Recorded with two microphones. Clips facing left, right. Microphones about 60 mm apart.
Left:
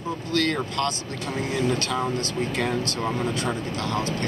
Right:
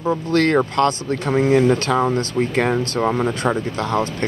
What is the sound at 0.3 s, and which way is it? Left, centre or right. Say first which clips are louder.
Speech: right 7 dB; right.